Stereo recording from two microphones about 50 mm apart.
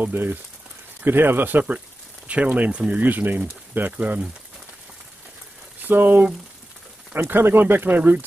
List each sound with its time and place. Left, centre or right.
0.0 s speech: right
3.9 s speech: right
5.8 s speech: right
7.2 s speech: right